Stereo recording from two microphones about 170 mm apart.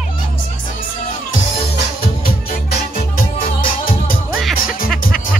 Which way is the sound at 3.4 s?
55° left (ahead or behind).